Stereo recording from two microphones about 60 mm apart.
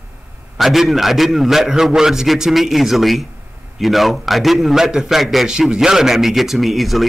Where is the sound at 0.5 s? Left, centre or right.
Centre.